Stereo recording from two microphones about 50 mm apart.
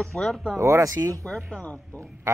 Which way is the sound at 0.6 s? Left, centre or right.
Right.